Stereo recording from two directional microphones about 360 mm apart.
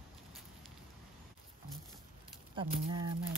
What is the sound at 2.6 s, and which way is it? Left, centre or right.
Speech, centre.